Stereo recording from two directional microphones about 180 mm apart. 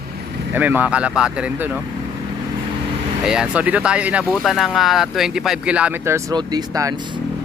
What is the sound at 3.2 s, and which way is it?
Speech, 5° right (ahead or behind).